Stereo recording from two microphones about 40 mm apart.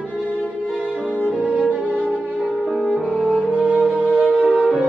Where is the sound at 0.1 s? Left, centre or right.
Left.